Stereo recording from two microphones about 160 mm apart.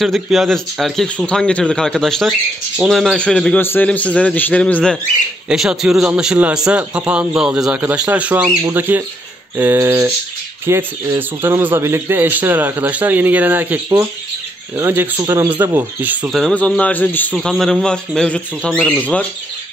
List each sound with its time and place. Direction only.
0.0 s a man's voice: centre (ahead or behind)
5.5 s a man's voice: 5° right (ahead or behind)
14.8 s a man's voice: 15° right (ahead or behind); by 19.2 s 5° left (ahead or behind)